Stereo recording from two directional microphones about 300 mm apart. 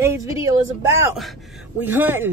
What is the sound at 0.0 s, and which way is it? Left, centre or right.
A woman's voice, centre.